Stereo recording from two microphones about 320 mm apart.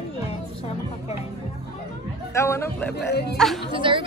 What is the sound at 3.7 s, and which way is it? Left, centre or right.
Speech, centre.